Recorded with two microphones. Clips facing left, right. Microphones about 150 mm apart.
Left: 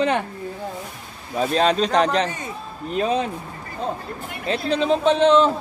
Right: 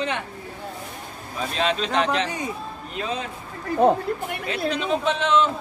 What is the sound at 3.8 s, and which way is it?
Speech, 60° right (ahead or behind).